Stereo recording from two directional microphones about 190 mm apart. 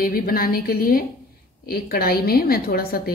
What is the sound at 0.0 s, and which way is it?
A woman's voice, 50° left (ahead or behind).